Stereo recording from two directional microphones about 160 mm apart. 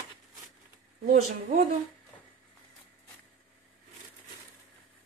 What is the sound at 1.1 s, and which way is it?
Speech, 45° right (ahead or behind).